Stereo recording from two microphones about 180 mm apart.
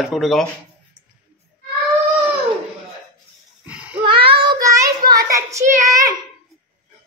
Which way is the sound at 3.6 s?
5° right (ahead or behind).